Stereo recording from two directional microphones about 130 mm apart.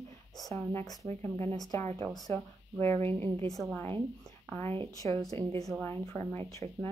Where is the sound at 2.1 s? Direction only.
30° left (ahead or behind).